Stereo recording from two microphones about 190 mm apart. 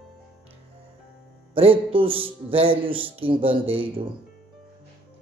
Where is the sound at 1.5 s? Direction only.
30° right (ahead or behind).